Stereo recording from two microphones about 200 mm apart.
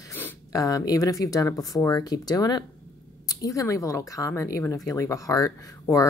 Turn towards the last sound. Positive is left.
turn(degrees=15)  # may be behind; listen again after turning